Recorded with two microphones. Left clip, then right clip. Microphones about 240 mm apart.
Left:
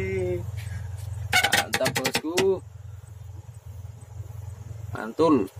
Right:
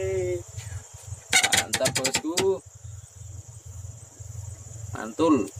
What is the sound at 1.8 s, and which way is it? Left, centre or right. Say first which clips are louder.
Speech: even; centre.